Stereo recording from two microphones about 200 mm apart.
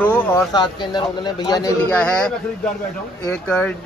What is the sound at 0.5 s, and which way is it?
Speech, 20° left (ahead or behind).